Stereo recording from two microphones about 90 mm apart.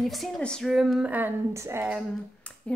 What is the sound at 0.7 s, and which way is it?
Speech, 5° right (ahead or behind).